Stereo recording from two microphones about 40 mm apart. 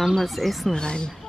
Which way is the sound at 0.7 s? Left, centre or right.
Left.